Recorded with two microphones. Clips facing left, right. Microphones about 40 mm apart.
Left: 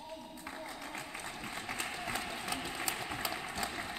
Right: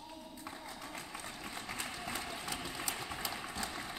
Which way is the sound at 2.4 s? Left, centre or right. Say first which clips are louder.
Left 3 dB; centre.